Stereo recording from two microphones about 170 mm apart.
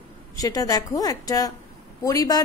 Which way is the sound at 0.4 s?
20° left (ahead or behind).